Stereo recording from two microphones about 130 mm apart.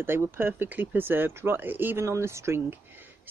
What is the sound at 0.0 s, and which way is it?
Speech, 15° right (ahead or behind).